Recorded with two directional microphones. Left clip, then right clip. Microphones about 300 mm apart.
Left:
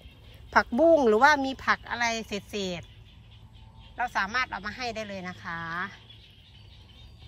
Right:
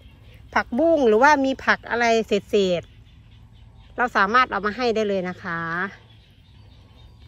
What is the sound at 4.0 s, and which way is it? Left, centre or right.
Speech, centre.